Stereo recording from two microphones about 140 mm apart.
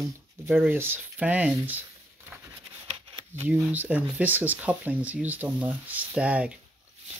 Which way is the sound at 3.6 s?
10° right (ahead or behind).